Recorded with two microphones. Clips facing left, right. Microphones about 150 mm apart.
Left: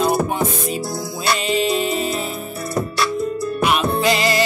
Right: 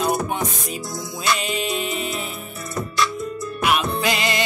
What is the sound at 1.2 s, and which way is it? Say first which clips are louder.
Music: left 3 dB; 35° left (ahead or behind).